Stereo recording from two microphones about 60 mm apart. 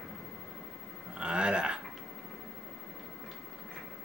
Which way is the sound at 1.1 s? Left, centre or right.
Centre.